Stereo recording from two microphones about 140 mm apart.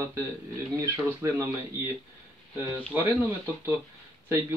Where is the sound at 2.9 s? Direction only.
15° right (ahead or behind).